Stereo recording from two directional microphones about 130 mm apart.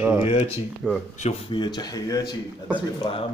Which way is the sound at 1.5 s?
35° left (ahead or behind).